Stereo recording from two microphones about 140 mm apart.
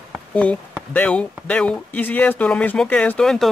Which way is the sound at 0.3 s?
10° left (ahead or behind).